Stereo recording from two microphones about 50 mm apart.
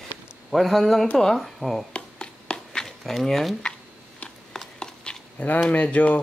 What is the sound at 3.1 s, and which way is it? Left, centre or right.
Speech, centre.